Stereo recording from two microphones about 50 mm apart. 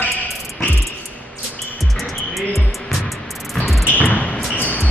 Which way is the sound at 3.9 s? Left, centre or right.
Left.